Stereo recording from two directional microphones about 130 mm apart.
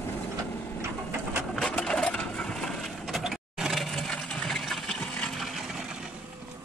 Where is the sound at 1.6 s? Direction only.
5° left (ahead or behind).